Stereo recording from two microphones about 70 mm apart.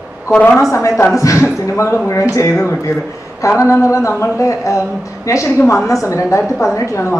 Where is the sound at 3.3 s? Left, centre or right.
Left.